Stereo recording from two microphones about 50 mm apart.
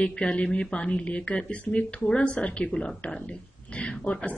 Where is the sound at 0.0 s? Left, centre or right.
Left.